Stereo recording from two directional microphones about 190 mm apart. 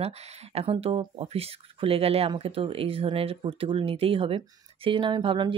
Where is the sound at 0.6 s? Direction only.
30° right (ahead or behind).